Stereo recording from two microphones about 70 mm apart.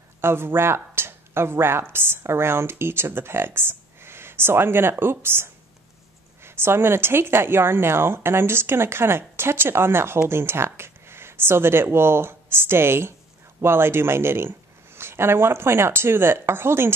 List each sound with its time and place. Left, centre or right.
0.2 s a woman's voice: right